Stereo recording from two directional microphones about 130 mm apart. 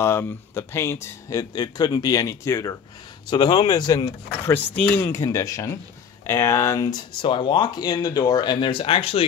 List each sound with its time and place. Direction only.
0.0 s speech: 20° left (ahead or behind)
3.3 s speech: 35° left (ahead or behind)
4.5 s speech: 15° left (ahead or behind); by 9.2 s 45° left (ahead or behind)